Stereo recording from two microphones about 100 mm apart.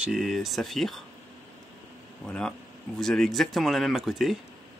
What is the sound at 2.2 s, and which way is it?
Speech, 5° left (ahead or behind).